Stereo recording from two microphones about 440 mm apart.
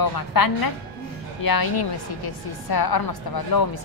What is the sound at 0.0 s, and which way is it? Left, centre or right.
A woman's voice, left.